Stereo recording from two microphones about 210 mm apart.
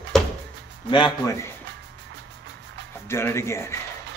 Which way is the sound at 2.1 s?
55° right (ahead or behind).